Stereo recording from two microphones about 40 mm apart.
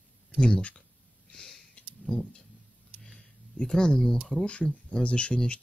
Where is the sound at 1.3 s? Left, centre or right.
Centre.